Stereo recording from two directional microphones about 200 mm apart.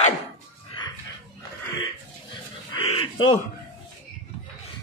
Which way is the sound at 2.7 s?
25° left (ahead or behind).